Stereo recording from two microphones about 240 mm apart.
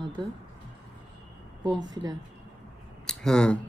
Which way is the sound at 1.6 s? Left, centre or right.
Centre.